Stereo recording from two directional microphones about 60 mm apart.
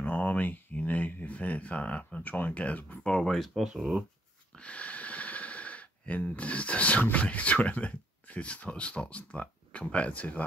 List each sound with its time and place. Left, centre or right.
0.0 s speech: left
3.3 s speech: centre
4.6 s speech: left